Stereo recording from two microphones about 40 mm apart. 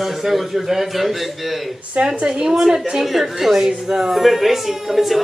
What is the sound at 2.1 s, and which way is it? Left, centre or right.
A woman's voice, right.